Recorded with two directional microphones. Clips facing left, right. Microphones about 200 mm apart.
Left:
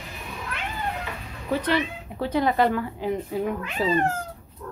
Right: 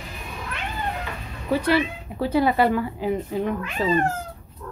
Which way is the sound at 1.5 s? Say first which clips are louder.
Right 3 dB; 10° right (ahead or behind).